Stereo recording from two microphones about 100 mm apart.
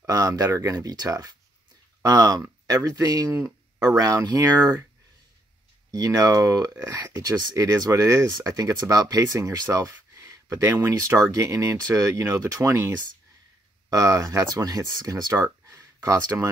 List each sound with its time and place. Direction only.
0.0 s speech: 35° right (ahead or behind)
5.9 s speech: 40° right (ahead or behind)
15.4 s a sound: 35° right (ahead or behind)